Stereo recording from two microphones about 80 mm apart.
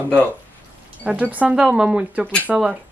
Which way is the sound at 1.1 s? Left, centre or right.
Centre.